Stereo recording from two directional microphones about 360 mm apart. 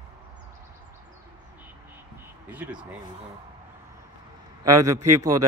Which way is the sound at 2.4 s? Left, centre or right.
Centre.